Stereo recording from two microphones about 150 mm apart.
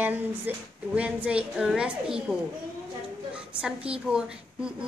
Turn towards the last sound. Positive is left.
turn(degrees=-5)  # may be behind; listen again after turning